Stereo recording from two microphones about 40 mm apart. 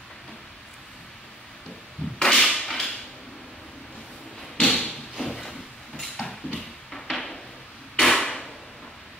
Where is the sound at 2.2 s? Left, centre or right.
Centre.